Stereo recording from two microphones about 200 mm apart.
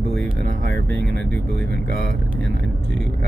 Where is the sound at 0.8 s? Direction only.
5° left (ahead or behind).